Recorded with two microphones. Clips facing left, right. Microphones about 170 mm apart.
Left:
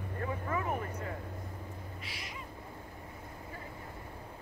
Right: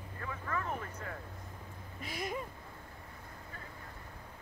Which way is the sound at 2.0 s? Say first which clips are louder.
Right 7 dB; 50° right (ahead or behind).